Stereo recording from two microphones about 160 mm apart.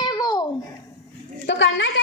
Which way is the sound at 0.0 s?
25° left (ahead or behind).